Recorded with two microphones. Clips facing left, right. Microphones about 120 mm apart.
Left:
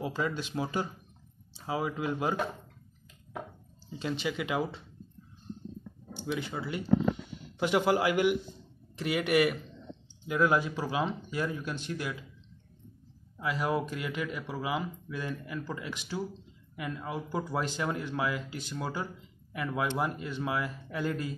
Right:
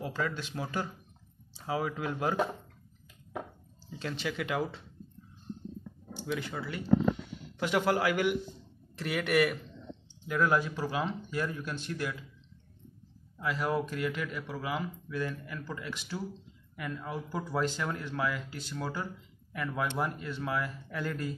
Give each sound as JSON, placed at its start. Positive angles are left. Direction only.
{"t": 0.0, "sound": "speech", "side_deg": 15}
{"t": 4.0, "sound": "speech", "side_deg": 10}
{"t": 6.2, "sound": "speech", "side_deg": 10}
{"t": 13.4, "sound": "speech", "side_deg": 15}